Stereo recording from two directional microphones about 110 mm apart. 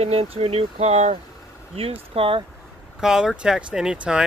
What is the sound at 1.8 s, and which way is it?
Speech, 60° right (ahead or behind).